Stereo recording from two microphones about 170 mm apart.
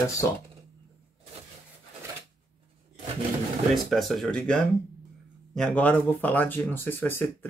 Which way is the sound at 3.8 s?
Centre (ahead or behind).